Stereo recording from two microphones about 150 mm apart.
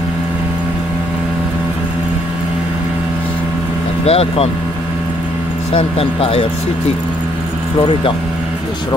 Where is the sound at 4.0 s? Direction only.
40° left (ahead or behind).